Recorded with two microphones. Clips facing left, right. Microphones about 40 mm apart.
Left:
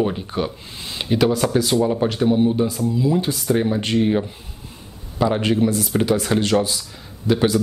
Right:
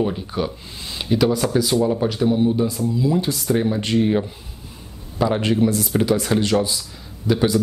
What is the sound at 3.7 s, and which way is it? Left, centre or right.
Speech, left.